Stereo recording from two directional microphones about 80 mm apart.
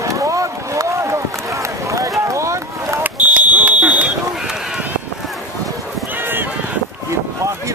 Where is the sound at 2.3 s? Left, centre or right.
Right.